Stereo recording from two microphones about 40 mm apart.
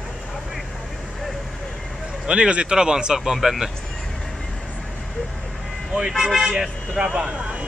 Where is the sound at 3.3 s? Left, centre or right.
Centre.